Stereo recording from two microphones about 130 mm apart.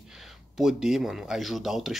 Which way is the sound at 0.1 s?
5° right (ahead or behind).